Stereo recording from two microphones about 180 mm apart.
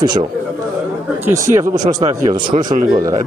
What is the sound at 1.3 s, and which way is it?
Speech, 15° right (ahead or behind).